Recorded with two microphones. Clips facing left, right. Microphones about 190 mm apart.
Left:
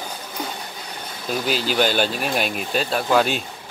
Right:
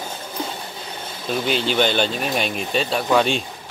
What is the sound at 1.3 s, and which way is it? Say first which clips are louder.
Speech: right 1 dB; 5° left (ahead or behind).